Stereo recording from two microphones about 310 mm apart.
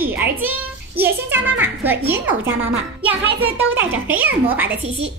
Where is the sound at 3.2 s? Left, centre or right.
Right.